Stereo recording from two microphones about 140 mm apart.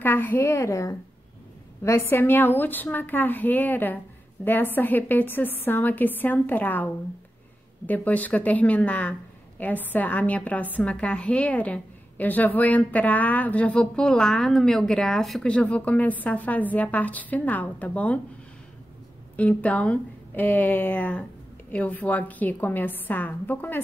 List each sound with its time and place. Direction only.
0.0 s a woman's voice: 15° left (ahead or behind)
19.3 s a woman's voice: 10° left (ahead or behind)